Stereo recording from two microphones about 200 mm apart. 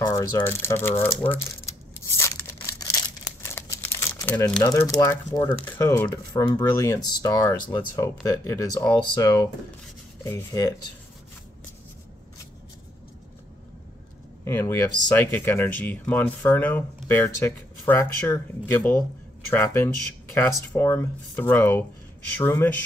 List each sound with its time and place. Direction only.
0.0 s speech: 15° left (ahead or behind)
2.0 s a sound: 15° left (ahead or behind)
3.4 s crumpling: 10° left (ahead or behind)
4.9 s speech: 15° left (ahead or behind)
14.4 s speech: 15° left (ahead or behind)